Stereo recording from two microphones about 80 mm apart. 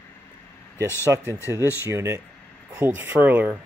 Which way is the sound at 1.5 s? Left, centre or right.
Right.